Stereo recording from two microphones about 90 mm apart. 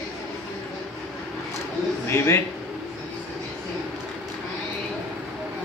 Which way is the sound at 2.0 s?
30° left (ahead or behind).